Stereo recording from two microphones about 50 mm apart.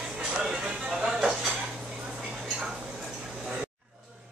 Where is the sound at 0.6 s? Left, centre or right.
Right.